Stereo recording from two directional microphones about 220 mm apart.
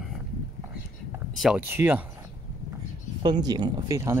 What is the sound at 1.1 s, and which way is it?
Speech, 5° right (ahead or behind).